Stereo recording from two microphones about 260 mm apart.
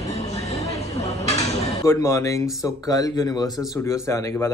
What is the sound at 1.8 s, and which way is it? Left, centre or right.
Speech, centre.